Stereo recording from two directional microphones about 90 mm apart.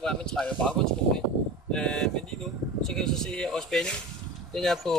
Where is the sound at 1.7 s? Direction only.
10° left (ahead or behind).